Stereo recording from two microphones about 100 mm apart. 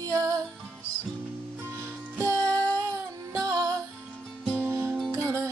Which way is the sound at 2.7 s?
35° right (ahead or behind).